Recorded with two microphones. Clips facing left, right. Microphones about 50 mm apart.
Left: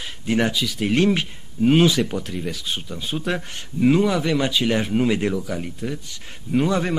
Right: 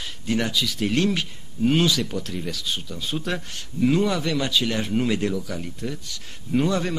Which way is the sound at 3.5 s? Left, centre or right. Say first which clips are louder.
Left 3 dB; left.